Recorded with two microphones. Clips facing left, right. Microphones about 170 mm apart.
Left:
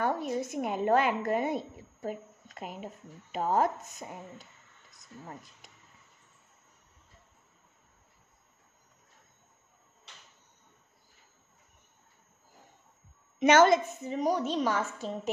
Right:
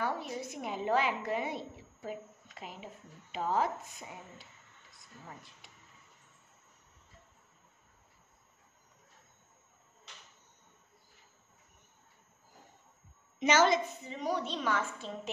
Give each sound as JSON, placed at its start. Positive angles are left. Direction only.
{"t": 0.0, "sound": "a woman's voice", "side_deg": 45}
{"t": 13.4, "sound": "a woman's voice", "side_deg": 55}